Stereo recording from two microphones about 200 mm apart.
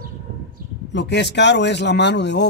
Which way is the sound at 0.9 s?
60° left (ahead or behind).